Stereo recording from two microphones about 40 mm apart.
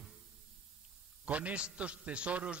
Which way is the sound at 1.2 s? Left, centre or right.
Right.